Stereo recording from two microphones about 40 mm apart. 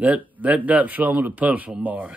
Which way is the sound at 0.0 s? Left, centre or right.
Right.